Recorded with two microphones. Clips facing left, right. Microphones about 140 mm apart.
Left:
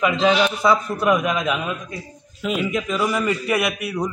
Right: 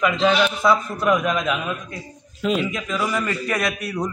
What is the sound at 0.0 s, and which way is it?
A man's voice, 10° left (ahead or behind).